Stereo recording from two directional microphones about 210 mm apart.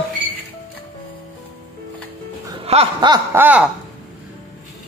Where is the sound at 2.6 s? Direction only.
30° right (ahead or behind).